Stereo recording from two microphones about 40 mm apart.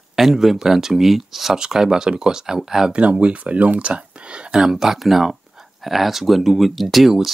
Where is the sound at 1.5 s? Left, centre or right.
Centre.